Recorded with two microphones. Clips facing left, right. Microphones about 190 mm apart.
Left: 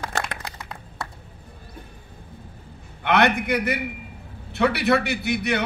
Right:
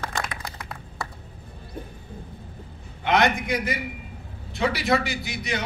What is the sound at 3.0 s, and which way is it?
A man's voice, 60° left (ahead or behind).